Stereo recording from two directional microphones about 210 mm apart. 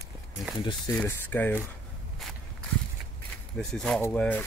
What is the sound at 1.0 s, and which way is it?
Speech, 10° left (ahead or behind).